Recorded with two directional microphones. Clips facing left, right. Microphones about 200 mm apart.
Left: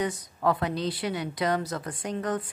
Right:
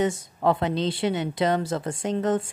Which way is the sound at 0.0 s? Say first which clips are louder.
Right 4 dB; 25° right (ahead or behind).